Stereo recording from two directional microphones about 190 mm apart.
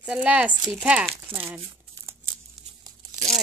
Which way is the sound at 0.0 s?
5° right (ahead or behind).